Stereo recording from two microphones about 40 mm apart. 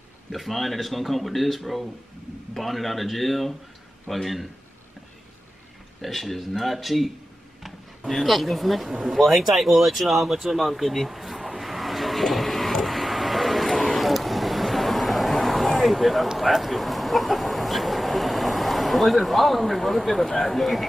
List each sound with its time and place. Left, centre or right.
0.3 s speech: centre
5.9 s speech: centre
8.1 s a sound: centre
13.9 s vehicle: centre